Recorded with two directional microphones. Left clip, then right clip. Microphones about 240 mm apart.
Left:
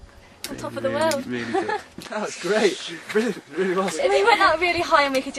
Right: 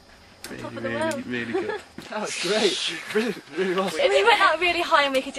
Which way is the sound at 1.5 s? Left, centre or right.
Centre.